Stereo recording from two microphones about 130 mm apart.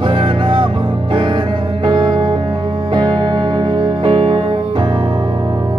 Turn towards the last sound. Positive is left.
turn(degrees=-40)  # may be behind; listen again after turning